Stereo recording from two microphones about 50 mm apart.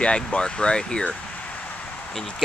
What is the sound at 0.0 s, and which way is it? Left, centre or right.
Speech, left.